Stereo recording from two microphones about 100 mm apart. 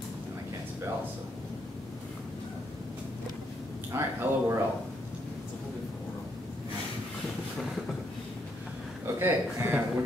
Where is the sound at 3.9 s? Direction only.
25° right (ahead or behind).